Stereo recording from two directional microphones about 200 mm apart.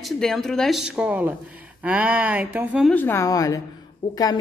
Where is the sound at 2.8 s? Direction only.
10° left (ahead or behind); by 4.2 s 25° left (ahead or behind).